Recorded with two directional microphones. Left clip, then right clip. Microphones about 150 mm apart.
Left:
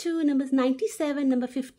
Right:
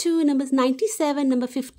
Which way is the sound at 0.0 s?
35° right (ahead or behind).